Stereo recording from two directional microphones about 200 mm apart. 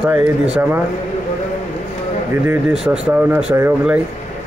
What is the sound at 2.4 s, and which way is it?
Speech, 5° right (ahead or behind).